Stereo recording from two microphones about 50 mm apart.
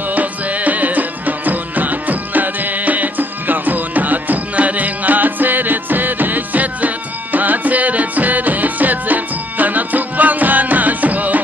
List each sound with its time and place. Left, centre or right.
0.1 s music: right